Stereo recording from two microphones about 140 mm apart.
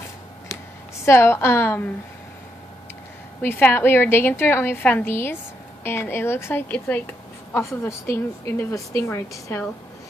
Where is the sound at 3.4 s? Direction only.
15° left (ahead or behind).